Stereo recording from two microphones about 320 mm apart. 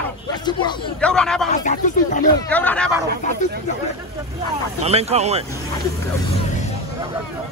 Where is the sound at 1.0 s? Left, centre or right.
Centre.